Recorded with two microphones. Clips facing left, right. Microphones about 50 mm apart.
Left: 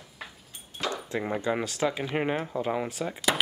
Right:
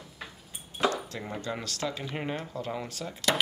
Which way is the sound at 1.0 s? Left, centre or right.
Left.